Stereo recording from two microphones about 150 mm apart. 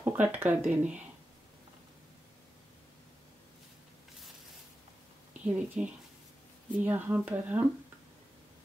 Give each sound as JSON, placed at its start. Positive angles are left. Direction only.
{"t": 0.0, "sound": "speech", "side_deg": -10}
{"t": 5.4, "sound": "speech", "side_deg": -10}